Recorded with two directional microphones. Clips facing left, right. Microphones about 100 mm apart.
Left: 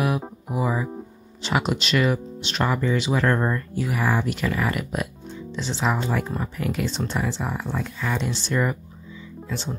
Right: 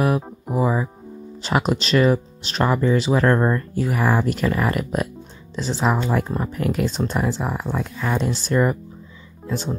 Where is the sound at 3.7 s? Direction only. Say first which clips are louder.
Right 2 dB; 40° right (ahead or behind).